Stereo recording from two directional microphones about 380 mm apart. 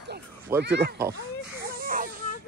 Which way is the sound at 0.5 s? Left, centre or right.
Right.